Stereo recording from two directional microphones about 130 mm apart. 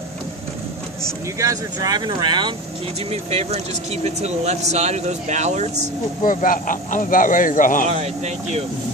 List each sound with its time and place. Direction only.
1.4 s speech: 25° right (ahead or behind)
3.1 s speech: 50° right (ahead or behind)
6.2 s speech: 90° left
7.9 s speech: 60° right (ahead or behind)